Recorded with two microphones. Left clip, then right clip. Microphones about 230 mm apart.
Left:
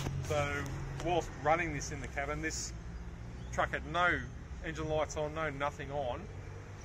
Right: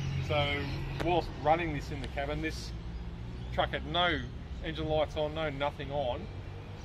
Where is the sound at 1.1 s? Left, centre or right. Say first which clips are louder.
Right 3 dB; centre.